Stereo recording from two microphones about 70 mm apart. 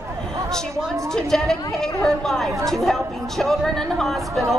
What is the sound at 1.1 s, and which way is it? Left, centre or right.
A woman's voice, centre.